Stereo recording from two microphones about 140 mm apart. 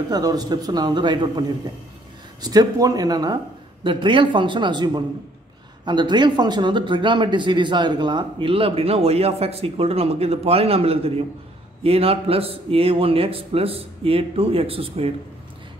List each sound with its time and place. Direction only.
0.1 s a man's voice: 30° right (ahead or behind)
2.4 s a man's voice: 30° right (ahead or behind); by 15.1 s 45° right (ahead or behind)